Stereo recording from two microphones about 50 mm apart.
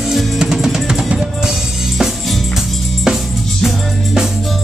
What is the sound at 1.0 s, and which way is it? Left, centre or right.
Drum, centre.